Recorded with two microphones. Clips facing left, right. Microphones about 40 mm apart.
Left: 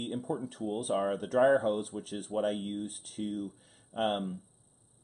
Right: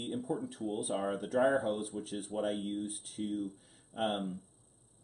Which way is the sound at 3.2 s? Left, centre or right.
Left.